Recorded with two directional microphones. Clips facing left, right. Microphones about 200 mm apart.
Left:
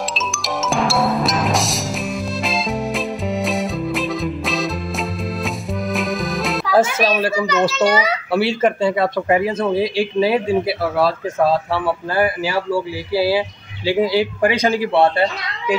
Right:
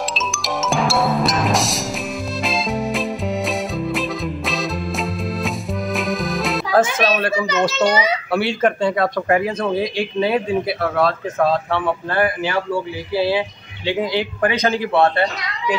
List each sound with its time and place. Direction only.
0.7 s music: centre (ahead or behind)
5.9 s accordion: centre (ahead or behind)
7.7 s a child's voice: 20° right (ahead or behind)
8.3 s a man's voice: 5° left (ahead or behind)